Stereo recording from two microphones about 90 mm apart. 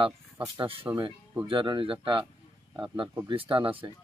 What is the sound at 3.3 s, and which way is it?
Speech, 65° right (ahead or behind).